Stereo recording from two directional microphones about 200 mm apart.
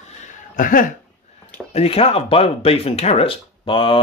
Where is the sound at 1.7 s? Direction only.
30° left (ahead or behind).